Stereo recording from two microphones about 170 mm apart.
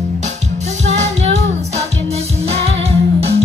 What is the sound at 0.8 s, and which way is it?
Music, 40° right (ahead or behind).